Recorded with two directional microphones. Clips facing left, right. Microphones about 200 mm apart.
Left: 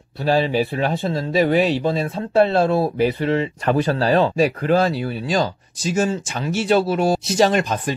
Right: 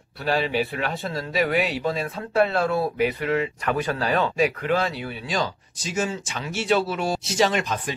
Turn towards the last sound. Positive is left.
turn(degrees=40)  # may be behind; listen again after turning